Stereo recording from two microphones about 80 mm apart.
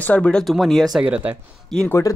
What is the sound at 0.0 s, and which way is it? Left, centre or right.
Speech, centre.